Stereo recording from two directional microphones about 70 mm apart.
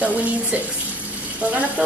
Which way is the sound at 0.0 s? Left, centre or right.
Right.